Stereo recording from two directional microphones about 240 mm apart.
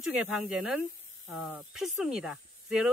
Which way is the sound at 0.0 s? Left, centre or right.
Centre.